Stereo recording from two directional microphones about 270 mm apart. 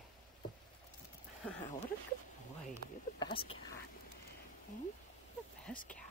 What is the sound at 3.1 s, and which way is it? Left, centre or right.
Speech, centre.